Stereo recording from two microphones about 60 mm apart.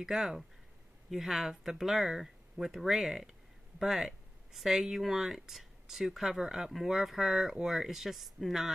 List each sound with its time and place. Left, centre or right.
0.0 s speech: centre